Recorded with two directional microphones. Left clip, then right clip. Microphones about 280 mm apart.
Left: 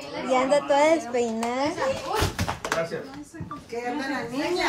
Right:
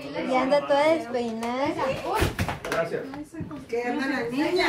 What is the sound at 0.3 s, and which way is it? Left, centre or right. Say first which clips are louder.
A woman's voice: left 1 dB; left.